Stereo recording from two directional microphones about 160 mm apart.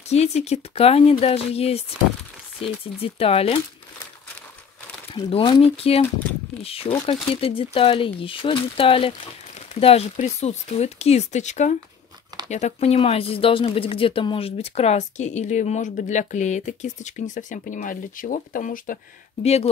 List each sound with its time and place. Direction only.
0.1 s speech: 40° left (ahead or behind)
5.1 s speech: 30° left (ahead or behind); by 18.9 s 60° left (ahead or behind)
19.4 s speech: 40° left (ahead or behind)